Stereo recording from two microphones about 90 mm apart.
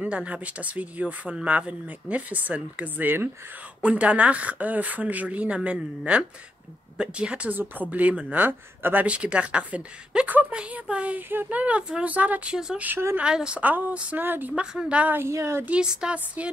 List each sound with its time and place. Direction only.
0.0 s speech: 15° right (ahead or behind)
12.5 s speech: 5° right (ahead or behind)
12.8 s speech: 20° right (ahead or behind)
13.2 s speech: 10° right (ahead or behind)
14.5 s speech: 10° right (ahead or behind)
15.1 s speech: 30° right (ahead or behind)
15.6 s speech: 10° right (ahead or behind)